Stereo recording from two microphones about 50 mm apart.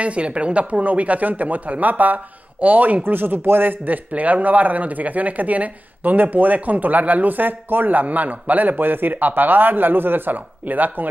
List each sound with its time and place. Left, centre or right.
0.0 s speech: right
3.0 s speech: right